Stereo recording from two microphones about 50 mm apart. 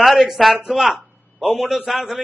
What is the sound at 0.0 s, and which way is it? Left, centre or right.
A man's voice, centre.